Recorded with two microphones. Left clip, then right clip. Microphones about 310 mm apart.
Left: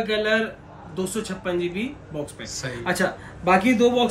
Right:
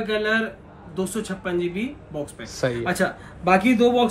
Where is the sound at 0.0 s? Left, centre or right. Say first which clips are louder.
Left 1 dB; centre.